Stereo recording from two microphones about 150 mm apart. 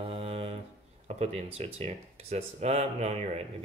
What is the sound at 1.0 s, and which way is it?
Speech, 45° right (ahead or behind).